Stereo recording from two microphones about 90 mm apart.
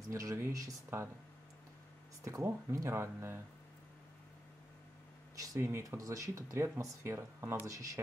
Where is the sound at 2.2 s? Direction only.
30° right (ahead or behind).